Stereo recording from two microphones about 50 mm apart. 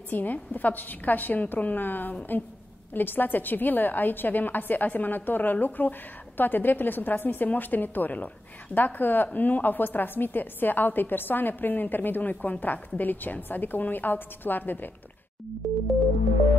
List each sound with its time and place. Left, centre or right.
0.1 s a woman's voice: left
15.6 s music: centre